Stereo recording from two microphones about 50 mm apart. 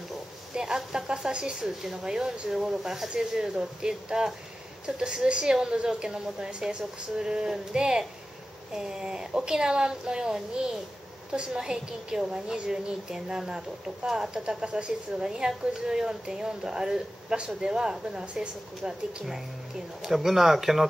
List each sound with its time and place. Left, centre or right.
0.6 s a woman's voice: centre